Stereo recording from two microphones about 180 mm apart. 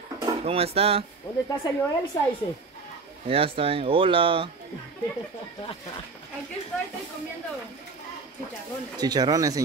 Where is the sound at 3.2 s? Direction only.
30° right (ahead or behind).